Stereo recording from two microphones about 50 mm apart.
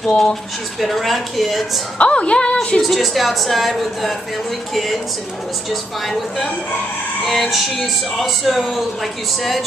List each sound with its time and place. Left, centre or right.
0.2 s speech: centre
2.0 s music: left
2.8 s speech: centre
7.2 s speech: centre